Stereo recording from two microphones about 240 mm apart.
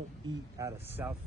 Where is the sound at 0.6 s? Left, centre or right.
Centre.